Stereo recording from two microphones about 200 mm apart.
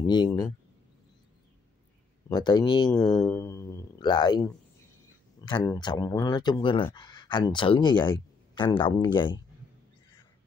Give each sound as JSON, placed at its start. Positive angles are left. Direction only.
{"t": 0.0, "sound": "speech", "side_deg": 20}
{"t": 2.2, "sound": "speech", "side_deg": 20}
{"t": 3.3, "sound": "music", "side_deg": 15}
{"t": 5.4, "sound": "speech", "side_deg": 20}